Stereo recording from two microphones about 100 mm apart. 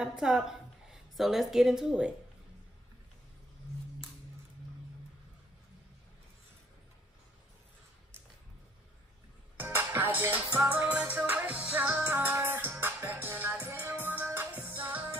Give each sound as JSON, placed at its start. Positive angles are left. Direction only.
{"t": 0.0, "sound": "a woman's voice", "side_deg": -5}
{"t": 9.6, "sound": "music", "side_deg": -20}